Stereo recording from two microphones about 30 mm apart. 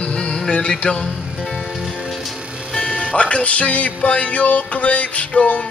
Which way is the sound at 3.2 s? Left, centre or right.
Left.